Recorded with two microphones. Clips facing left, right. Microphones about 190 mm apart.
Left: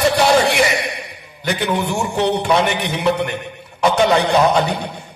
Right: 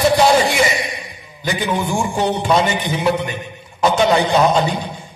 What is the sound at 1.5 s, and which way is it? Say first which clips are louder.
A man's voice: even; 65° left (ahead or behind).